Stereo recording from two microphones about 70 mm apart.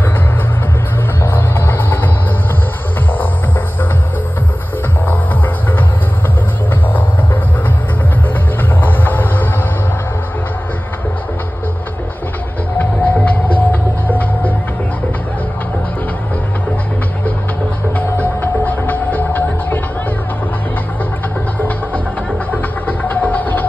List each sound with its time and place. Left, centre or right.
1.2 s music: left
5.0 s music: left
8.8 s music: left
12.7 s music: left
17.9 s music: left
22.5 s vehicle: left